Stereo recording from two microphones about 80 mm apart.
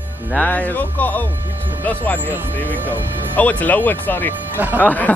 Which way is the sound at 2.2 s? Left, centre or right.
Right.